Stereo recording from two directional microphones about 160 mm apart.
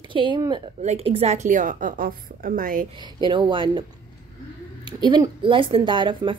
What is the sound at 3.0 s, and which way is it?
Speech, 30° right (ahead or behind).